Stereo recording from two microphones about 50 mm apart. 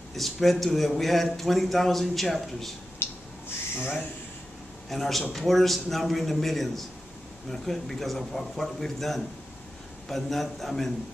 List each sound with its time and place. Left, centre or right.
0.1 s a man's voice: centre
3.0 s a sound: left
4.8 s a man's voice: centre